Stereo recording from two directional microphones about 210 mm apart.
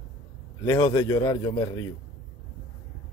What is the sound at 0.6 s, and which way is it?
Speech, 15° left (ahead or behind).